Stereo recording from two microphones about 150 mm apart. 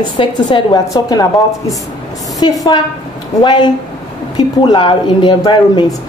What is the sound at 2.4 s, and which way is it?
A woman's voice, 30° left (ahead or behind).